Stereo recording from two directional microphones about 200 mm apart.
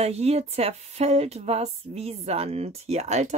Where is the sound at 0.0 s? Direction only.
30° right (ahead or behind).